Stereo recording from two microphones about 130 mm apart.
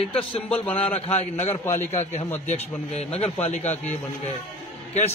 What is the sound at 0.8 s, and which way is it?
Speech, 50° left (ahead or behind).